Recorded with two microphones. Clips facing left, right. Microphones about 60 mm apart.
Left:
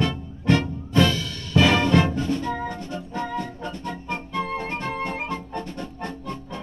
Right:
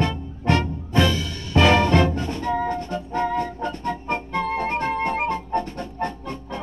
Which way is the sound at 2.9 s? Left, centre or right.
Right.